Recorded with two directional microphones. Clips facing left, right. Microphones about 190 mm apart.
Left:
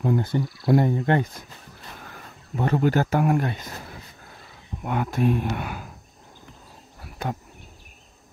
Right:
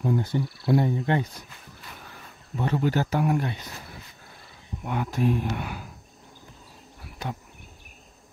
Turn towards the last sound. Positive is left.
turn(degrees=50)  # may be behind; listen again after turning